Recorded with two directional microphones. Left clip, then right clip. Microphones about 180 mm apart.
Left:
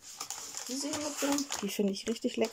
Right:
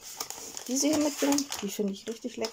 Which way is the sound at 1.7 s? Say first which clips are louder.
Left 1 dB; 10° left (ahead or behind).